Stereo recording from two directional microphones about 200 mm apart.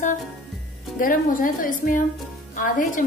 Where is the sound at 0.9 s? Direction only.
45° left (ahead or behind).